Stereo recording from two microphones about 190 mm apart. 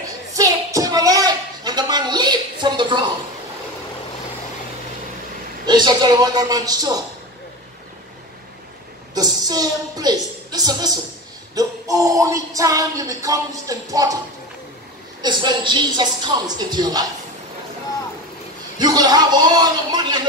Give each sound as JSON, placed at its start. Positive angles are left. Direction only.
{"t": 0.3, "sound": "a sound", "side_deg": -15}
{"t": 5.7, "sound": "a woman's voice", "side_deg": -20}
{"t": 9.1, "sound": "speech", "side_deg": -20}
{"t": 11.5, "sound": "music", "side_deg": -20}
{"t": 15.2, "sound": "a woman's voice", "side_deg": -25}
{"t": 18.8, "sound": "a woman's voice", "side_deg": -20}